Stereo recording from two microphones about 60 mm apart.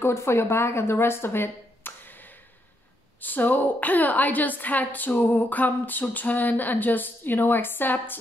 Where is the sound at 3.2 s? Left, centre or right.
Left.